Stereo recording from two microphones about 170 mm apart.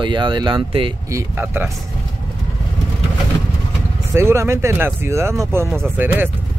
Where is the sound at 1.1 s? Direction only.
10° right (ahead or behind).